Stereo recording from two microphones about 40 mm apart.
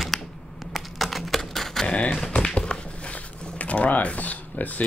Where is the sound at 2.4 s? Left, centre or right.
Centre.